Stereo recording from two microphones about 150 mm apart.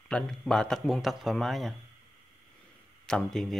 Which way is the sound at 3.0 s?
5° left (ahead or behind).